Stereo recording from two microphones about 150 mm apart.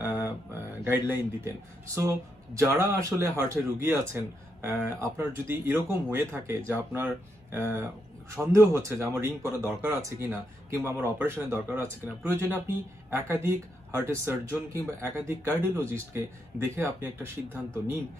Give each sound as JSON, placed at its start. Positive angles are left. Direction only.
{"t": 0.0, "sound": "mantra", "side_deg": -15}
{"t": 0.8, "sound": "a man's voice", "side_deg": -15}
{"t": 8.4, "sound": "a man's voice", "side_deg": -20}